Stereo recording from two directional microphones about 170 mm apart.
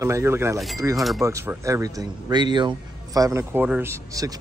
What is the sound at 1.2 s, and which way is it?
A man's voice, 15° right (ahead or behind).